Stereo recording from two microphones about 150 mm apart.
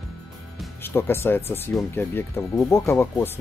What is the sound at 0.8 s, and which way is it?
Speech, 15° left (ahead or behind).